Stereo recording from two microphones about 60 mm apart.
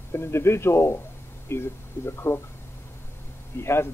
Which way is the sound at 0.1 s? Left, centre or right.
Left.